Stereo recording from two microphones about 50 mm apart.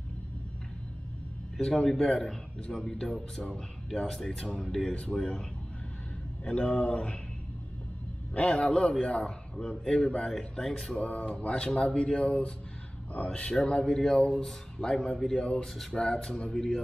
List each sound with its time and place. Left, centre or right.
1.7 s speech: centre
4.9 s speech: left
8.4 s speech: left; by 11.0 s centre
11.0 s speech: left
16.5 s speech: centre